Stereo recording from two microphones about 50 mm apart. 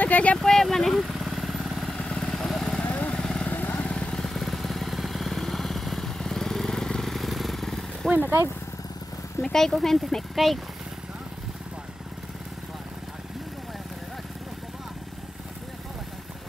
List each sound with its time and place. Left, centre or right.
0.0 s speech: left
0.4 s vehicle: centre
2.0 s vehicle: centre
2.8 s vehicle: left
3.2 s vehicle: centre
3.5 s vehicle: left
3.9 s vehicle: centre
4.3 s vehicle: centre
9.4 s speech: centre